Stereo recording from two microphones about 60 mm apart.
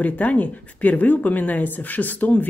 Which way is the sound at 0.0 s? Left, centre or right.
Left.